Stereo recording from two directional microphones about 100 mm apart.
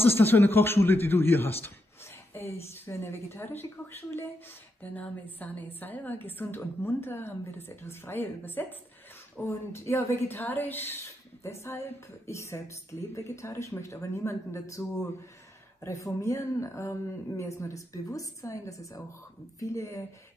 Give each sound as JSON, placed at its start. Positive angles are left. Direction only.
{"t": 0.0, "sound": "a woman's voice", "side_deg": 20}